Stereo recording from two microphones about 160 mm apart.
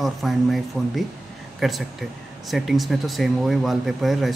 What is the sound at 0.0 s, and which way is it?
Speech, centre (ahead or behind).